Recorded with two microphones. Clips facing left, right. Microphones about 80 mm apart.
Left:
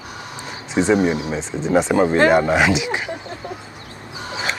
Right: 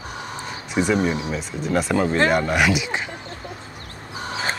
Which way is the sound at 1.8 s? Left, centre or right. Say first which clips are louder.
Left 4 dB; centre.